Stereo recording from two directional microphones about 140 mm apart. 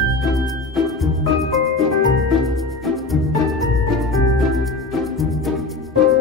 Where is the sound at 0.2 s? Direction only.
Centre (ahead or behind).